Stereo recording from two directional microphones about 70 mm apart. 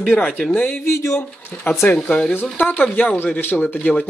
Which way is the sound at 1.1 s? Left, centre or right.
Left.